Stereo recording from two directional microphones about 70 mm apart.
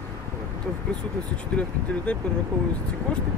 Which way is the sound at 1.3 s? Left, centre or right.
Centre.